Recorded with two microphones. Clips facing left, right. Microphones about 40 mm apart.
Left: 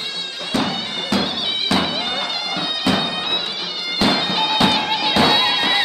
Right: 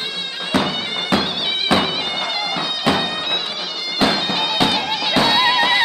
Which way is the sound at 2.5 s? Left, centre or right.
Centre.